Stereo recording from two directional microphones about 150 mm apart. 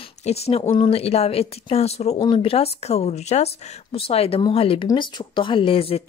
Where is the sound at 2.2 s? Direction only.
35° left (ahead or behind).